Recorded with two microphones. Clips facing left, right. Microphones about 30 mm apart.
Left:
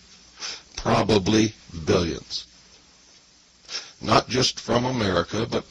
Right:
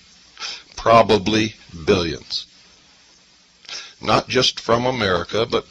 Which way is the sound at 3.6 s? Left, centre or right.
Right.